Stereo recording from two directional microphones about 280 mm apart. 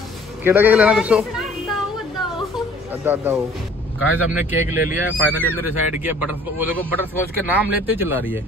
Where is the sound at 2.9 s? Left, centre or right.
Centre.